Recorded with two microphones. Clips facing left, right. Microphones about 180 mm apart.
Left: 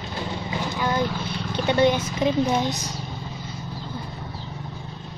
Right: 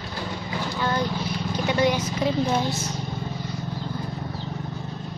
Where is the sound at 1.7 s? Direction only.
30° left (ahead or behind).